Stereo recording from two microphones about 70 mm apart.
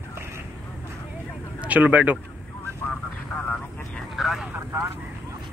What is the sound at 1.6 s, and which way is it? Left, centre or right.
Speech, right.